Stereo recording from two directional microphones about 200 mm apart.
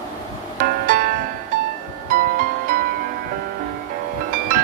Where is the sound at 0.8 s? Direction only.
45° right (ahead or behind).